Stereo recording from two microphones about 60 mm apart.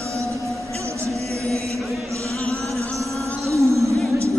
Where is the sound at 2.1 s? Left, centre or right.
Right.